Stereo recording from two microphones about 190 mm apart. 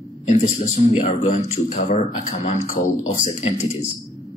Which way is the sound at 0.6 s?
40° left (ahead or behind).